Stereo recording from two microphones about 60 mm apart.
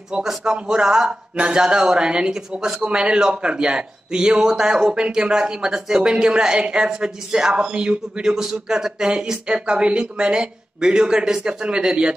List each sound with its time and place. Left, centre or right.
0.1 s speech: centre